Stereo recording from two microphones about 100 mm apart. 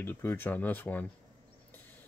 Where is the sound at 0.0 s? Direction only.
20° left (ahead or behind).